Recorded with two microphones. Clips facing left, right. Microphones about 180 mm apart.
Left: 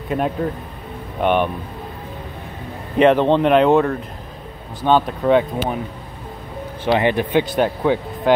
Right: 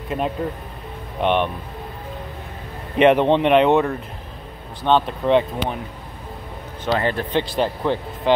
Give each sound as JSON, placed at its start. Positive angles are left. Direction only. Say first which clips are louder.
{"t": 0.1, "sound": "speech", "louder": "left 3 dB", "side_deg": 0}
{"t": 3.0, "sound": "speech", "louder": "left 1 dB", "side_deg": 0}
{"t": 7.0, "sound": "speech", "louder": "left 5 dB", "side_deg": 15}